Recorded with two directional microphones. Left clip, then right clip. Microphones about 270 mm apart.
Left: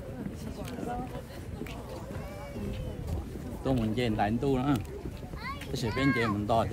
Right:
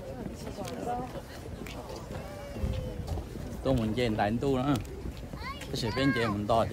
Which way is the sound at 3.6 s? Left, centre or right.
Centre.